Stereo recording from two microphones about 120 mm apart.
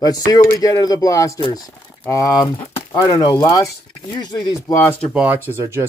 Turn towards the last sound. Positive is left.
turn(degrees=-20)  # may be behind; listen again after turning